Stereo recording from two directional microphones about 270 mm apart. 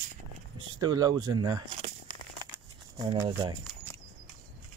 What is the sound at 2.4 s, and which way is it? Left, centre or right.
Crumpling, centre.